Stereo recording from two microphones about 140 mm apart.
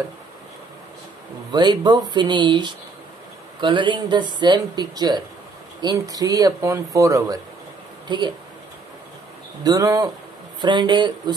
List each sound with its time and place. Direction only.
1.5 s speech: 30° right (ahead or behind)
9.6 s speech: 25° right (ahead or behind)